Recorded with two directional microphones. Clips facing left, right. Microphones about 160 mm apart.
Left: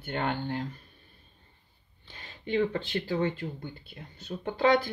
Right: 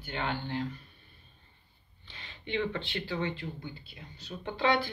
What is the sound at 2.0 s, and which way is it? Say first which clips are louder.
Speech: left 3 dB; 45° left (ahead or behind).